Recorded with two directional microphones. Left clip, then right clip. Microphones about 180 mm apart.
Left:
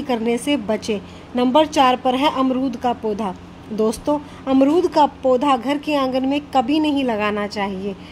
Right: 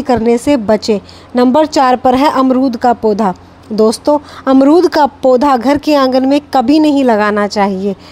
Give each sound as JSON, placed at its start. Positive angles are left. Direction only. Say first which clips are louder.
{"t": 0.0, "sound": "speech", "louder": "right 10 dB", "side_deg": -40}